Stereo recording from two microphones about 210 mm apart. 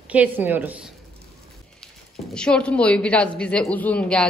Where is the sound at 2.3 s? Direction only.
5° left (ahead or behind).